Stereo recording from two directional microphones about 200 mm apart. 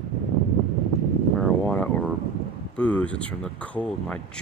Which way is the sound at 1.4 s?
5° left (ahead or behind).